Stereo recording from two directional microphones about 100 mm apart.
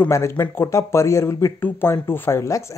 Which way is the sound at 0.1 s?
30° left (ahead or behind).